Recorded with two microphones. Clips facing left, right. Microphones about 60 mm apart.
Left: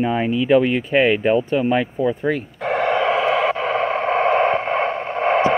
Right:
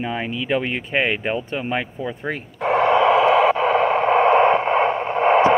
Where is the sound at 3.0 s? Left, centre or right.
Centre.